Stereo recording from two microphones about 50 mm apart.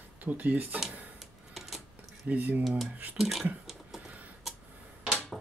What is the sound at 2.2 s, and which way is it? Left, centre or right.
Speech, right.